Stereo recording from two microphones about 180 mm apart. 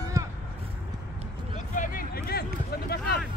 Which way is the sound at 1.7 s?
50° left (ahead or behind).